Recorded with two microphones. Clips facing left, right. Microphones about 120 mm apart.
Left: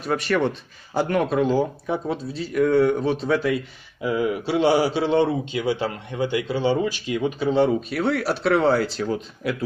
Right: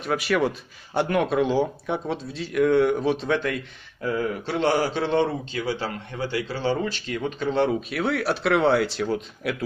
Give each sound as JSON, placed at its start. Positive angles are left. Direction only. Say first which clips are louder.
{"t": 0.0, "sound": "speech", "louder": "left 1 dB", "side_deg": 0}
{"t": 5.6, "sound": "a man's voice", "louder": "left 4 dB", "side_deg": 20}